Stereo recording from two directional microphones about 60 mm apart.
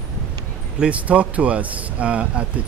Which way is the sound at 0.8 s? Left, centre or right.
Right.